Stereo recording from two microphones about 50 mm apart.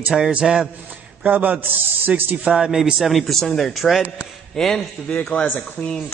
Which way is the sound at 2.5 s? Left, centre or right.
Centre.